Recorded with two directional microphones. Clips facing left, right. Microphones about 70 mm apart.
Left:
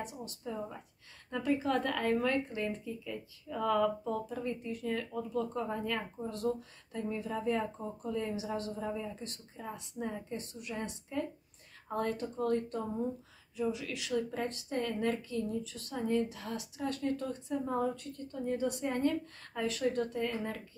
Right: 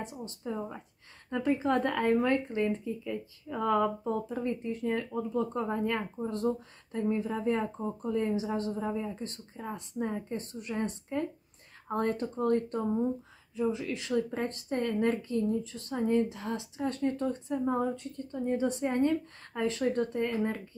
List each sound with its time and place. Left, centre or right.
0.0 s speech: right